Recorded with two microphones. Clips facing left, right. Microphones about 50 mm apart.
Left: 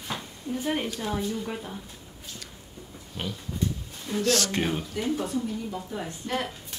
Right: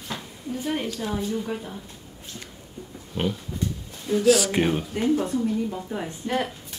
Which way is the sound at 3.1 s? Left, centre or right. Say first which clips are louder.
Right 8 dB; right.